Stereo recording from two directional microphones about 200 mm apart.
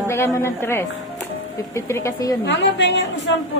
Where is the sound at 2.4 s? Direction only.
60° left (ahead or behind).